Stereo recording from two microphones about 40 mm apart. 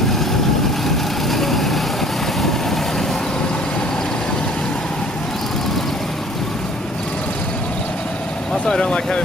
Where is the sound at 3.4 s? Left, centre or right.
Left.